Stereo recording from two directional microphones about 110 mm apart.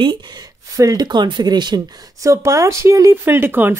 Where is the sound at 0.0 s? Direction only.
40° right (ahead or behind).